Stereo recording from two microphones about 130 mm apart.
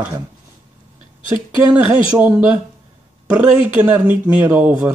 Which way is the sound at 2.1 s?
15° right (ahead or behind).